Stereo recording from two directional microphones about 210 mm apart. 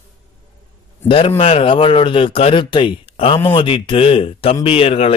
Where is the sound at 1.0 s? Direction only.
25° left (ahead or behind).